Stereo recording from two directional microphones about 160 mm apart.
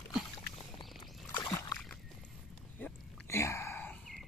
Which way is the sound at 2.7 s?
15° left (ahead or behind).